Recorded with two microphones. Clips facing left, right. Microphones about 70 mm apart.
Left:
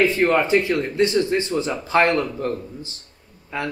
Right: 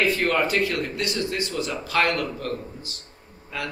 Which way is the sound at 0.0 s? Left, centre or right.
Left.